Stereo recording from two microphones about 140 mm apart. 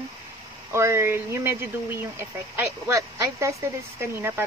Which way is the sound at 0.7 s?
20° right (ahead or behind).